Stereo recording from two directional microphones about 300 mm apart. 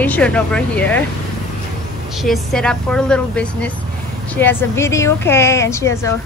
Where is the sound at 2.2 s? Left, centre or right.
Centre.